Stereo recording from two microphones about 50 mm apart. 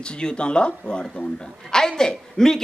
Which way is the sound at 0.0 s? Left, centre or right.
Centre.